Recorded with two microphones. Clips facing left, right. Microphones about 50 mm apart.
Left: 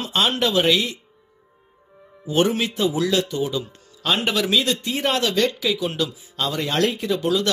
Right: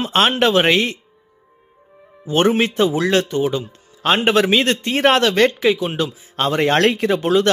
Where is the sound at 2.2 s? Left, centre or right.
Right.